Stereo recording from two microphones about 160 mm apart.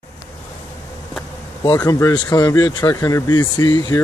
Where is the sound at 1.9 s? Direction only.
20° left (ahead or behind).